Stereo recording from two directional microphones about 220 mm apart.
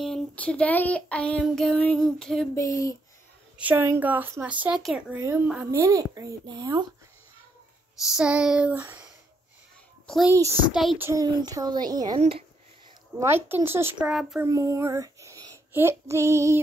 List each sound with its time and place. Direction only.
0.0 s speech: 5° left (ahead or behind)
3.5 s speech: 10° right (ahead or behind)
8.1 s a child's voice: 5° right (ahead or behind)
11.1 s speech: 15° right (ahead or behind)
13.2 s speech: 10° right (ahead or behind)
14.5 s child singing: 15° right (ahead or behind)